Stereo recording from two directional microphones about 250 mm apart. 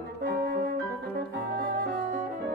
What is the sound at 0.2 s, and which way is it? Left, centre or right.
Music, right.